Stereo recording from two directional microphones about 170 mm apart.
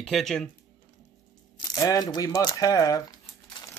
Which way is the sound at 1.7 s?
20° left (ahead or behind).